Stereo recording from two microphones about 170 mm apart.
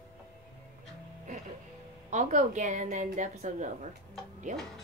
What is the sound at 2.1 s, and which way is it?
A woman's voice, 45° right (ahead or behind).